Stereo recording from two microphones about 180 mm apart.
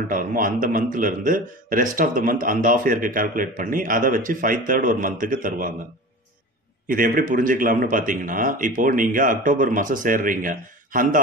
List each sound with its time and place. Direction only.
0.1 s a man's voice: 50° right (ahead or behind)
6.9 s a man's voice: 50° right (ahead or behind)